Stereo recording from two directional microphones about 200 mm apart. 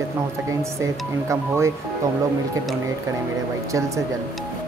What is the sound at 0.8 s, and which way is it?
Speech, 15° right (ahead or behind).